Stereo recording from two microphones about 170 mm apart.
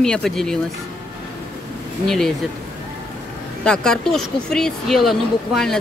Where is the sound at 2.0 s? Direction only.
Centre (ahead or behind).